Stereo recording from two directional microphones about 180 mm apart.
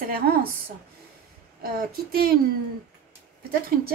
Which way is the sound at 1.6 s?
55° right (ahead or behind).